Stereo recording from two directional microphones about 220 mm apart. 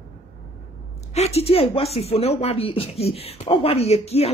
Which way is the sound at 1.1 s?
30° left (ahead or behind).